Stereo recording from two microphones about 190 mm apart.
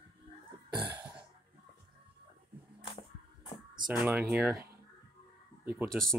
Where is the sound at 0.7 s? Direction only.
25° right (ahead or behind).